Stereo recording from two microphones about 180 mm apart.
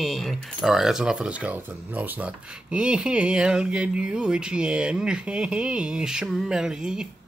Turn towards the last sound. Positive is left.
turn(degrees=-5)  # may be behind; listen again after turning